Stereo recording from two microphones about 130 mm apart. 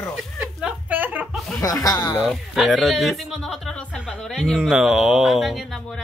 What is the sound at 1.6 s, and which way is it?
Speech, 25° left (ahead or behind).